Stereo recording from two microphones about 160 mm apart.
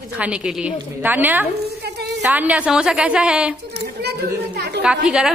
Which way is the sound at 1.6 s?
90° right.